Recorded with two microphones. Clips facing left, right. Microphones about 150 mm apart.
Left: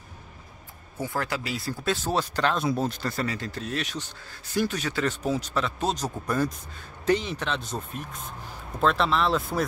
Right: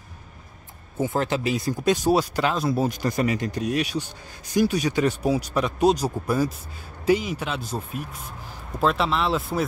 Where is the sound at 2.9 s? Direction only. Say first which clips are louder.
Right 6 dB; 15° right (ahead or behind).